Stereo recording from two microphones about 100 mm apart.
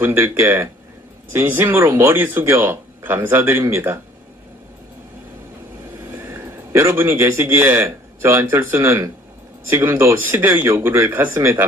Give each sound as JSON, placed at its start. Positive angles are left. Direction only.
{"t": 0.0, "sound": "speech", "side_deg": -25}
{"t": 6.1, "sound": "a man's voice", "side_deg": -25}